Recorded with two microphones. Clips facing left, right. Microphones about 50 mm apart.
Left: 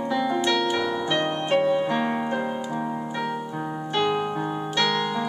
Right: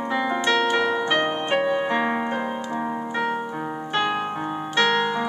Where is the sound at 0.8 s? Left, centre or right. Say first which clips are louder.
Right 3 dB; right.